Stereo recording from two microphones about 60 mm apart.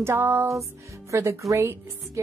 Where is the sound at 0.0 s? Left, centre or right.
Right.